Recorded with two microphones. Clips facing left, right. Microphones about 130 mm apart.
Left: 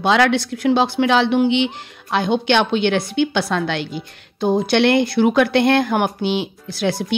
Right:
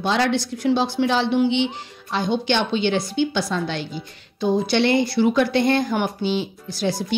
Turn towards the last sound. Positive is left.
turn(degrees=65)  # may be behind; listen again after turning